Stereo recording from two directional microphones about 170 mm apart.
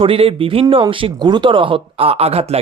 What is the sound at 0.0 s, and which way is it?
Speech, 30° right (ahead or behind).